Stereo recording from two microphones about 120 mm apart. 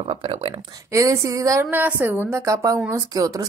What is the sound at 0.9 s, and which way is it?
Speech, 25° right (ahead or behind).